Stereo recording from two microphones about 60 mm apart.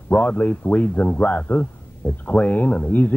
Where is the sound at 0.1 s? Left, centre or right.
Left.